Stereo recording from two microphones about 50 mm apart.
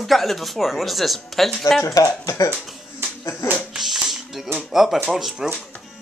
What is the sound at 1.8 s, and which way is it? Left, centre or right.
Speech, left.